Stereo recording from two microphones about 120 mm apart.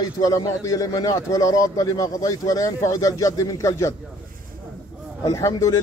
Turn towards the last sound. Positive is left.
turn(degrees=25)  # may be behind; listen again after turning